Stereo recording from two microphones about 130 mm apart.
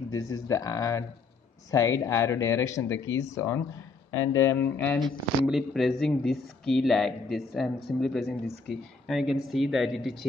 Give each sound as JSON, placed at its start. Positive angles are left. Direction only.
{"t": 0.1, "sound": "speech", "side_deg": 25}
{"t": 5.0, "sound": "speech", "side_deg": 0}